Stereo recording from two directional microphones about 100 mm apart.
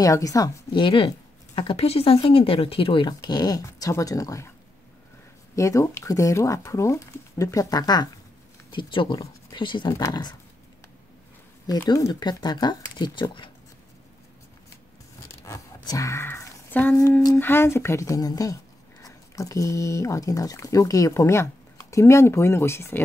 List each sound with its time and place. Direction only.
0.0 s speech: 35° left (ahead or behind)
0.7 s speech: 55° left (ahead or behind); by 4.5 s 35° left (ahead or behind)
5.6 s speech: 30° left (ahead or behind)
8.7 s speech: 55° left (ahead or behind)
11.9 s speech: 40° left (ahead or behind)
15.4 s a sound: 35° left (ahead or behind)
17.4 s speech: 25° left (ahead or behind)